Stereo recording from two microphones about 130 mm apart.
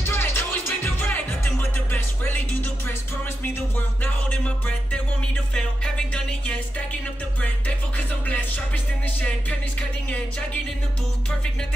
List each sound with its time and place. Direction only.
0.0 s music: 20° left (ahead or behind)
6.1 s music: 5° left (ahead or behind)